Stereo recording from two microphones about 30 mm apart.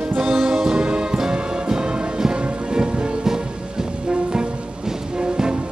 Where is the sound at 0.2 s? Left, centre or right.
Right.